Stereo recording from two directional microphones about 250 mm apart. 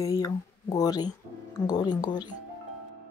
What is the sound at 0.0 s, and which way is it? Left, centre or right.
Speech, centre.